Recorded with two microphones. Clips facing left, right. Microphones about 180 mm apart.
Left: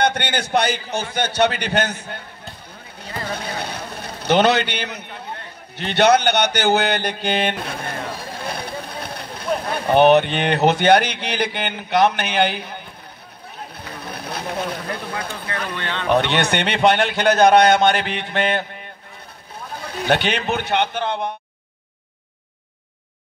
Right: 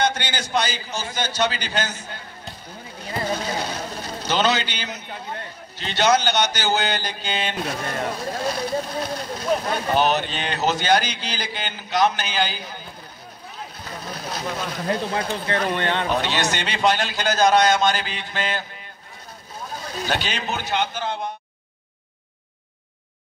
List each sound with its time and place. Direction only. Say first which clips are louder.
0.0 s a man's voice: left 3 dB; 60° left (ahead or behind)
3.3 s a man's voice: right 1 dB; 60° left (ahead or behind)
13.7 s a sound: left 1 dB; 60° left (ahead or behind)
14.8 s speech: right 4 dB; 30° right (ahead or behind)
15.7 s speech: right 4 dB; 55° right (ahead or behind)
16.1 s a man's voice: left 5 dB; 60° left (ahead or behind)